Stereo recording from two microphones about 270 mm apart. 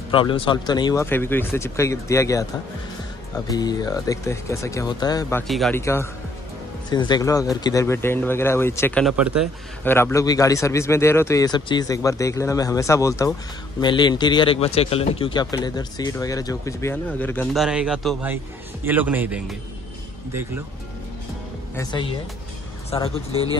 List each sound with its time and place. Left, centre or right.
0.1 s a man's voice: centre
5.5 s a man's voice: centre
9.8 s a man's voice: centre
21.7 s a man's voice: centre